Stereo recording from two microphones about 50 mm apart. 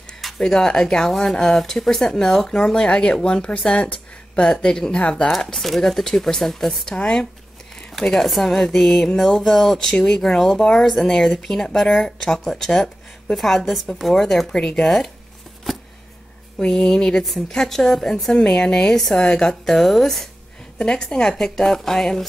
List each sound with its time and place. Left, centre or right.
0.4 s speech: centre
5.4 s speech: centre
8.0 s speech: centre
9.9 s speech: centre
15.7 s a sound: centre
16.5 s speech: centre
20.7 s speech: centre